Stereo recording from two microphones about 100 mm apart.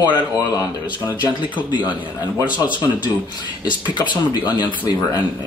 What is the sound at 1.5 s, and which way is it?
Speech, 50° left (ahead or behind).